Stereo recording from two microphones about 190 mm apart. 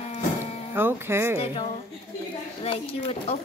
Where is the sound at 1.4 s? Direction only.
30° left (ahead or behind).